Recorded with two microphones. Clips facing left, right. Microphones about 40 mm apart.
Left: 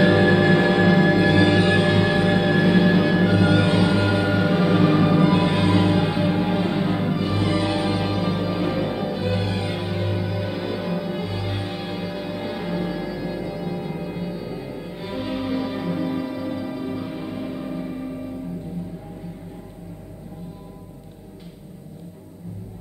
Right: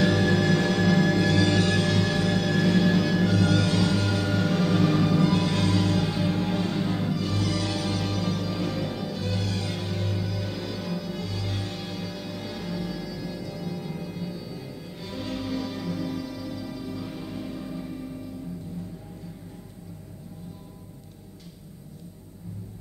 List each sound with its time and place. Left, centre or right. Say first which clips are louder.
0.0 s music: left 6 dB; left